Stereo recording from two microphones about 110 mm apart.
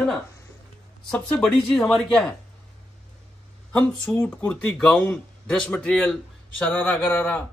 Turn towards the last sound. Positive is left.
turn(degrees=15)  # may be behind; listen again after turning